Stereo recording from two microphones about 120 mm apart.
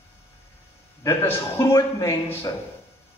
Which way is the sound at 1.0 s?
25° left (ahead or behind).